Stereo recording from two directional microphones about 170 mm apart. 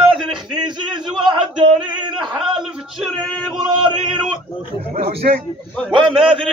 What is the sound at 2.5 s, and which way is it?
Speech, 5° right (ahead or behind).